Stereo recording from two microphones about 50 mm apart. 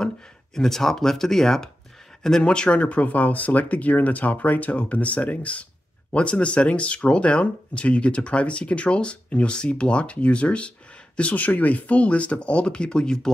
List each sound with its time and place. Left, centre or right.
0.6 s speech: centre